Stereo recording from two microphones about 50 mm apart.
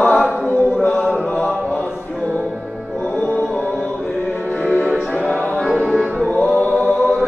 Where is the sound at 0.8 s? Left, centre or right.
Left.